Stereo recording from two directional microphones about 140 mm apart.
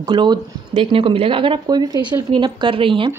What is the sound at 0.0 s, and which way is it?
Speech, 30° right (ahead or behind).